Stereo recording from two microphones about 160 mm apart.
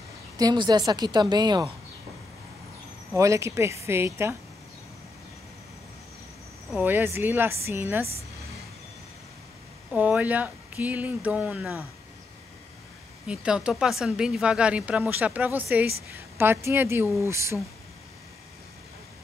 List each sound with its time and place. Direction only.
0.4 s a woman's voice: 25° right (ahead or behind)
3.1 s speech: 20° right (ahead or behind)
6.8 s speech: 10° right (ahead or behind)
9.9 s speech: 10° right (ahead or behind)
13.3 s speech: 5° right (ahead or behind)